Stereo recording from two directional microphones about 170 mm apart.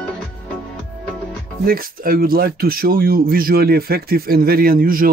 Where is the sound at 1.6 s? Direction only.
60° right (ahead or behind).